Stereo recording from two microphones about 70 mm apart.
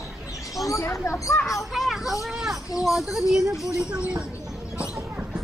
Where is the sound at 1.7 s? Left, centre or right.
Centre.